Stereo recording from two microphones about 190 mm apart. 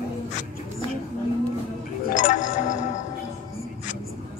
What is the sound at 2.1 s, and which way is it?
Music, 40° left (ahead or behind).